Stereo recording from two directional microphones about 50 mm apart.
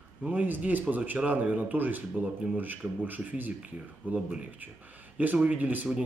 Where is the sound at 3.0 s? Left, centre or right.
Right.